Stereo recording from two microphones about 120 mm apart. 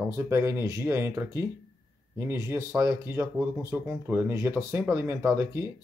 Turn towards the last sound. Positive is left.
turn(degrees=-25)  # may be behind; listen again after turning